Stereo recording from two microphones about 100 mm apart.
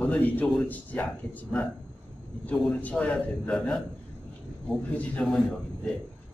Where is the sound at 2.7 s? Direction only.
15° left (ahead or behind).